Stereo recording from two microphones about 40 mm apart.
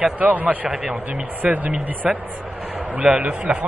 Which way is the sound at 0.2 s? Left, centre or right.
Right.